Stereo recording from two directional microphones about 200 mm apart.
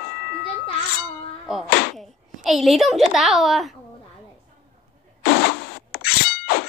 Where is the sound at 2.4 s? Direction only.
Centre (ahead or behind).